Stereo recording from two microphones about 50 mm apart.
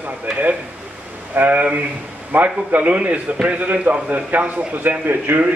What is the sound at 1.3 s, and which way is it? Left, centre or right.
A man's voice, right.